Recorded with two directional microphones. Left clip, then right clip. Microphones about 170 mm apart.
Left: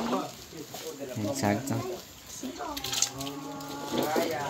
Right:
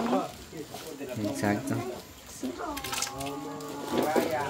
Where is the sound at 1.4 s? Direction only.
25° left (ahead or behind).